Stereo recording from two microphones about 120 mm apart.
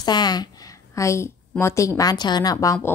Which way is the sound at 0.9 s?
25° left (ahead or behind).